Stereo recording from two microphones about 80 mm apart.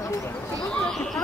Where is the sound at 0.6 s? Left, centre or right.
Centre.